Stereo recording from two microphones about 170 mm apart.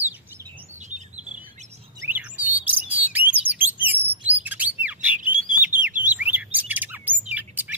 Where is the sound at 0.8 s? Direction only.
45° right (ahead or behind).